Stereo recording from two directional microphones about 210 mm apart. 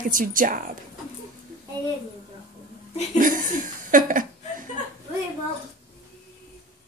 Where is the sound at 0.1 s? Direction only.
40° right (ahead or behind).